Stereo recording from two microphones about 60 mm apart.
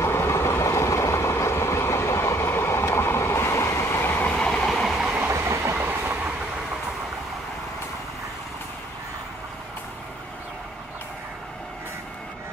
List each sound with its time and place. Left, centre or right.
0.0 s vehicle: left
4.1 s train: left
5.3 s train: right
5.8 s train: right